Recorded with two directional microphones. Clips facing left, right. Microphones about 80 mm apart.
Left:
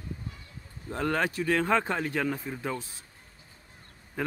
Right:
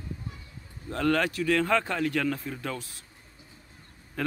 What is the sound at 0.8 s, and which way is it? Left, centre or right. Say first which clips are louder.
Speech: right 3 dB; centre.